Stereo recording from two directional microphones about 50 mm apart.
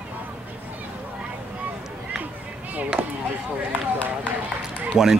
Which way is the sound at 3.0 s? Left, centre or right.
Right.